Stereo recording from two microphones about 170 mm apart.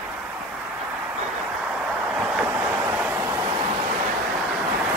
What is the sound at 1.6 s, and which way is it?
Vehicle, 5° right (ahead or behind).